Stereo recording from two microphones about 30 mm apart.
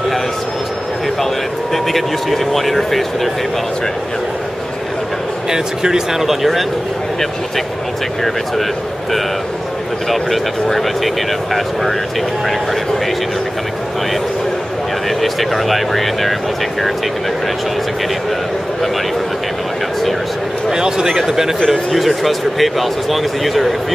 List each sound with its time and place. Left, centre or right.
1.2 s speech: centre
5.5 s speech: centre
6.2 s speech: centre
10.0 s speech: centre
15.0 s speech: centre
20.7 s speech: centre
21.9 s speech: centre